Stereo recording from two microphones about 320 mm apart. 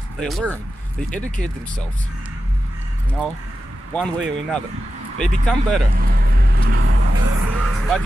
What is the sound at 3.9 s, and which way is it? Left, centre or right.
Speech, centre.